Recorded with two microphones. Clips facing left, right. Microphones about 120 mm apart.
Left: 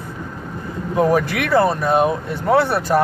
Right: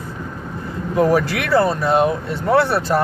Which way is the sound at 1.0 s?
20° left (ahead or behind).